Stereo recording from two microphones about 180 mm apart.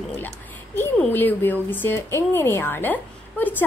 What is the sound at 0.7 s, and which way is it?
A woman's voice, 10° left (ahead or behind).